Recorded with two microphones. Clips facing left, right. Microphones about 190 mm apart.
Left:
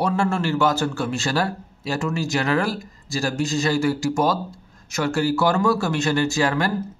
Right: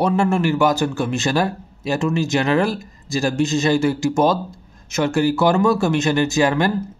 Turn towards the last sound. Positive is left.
turn(degrees=-20)  # may be behind; listen again after turning